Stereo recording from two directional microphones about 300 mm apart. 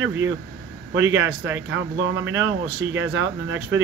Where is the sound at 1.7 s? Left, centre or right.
Right.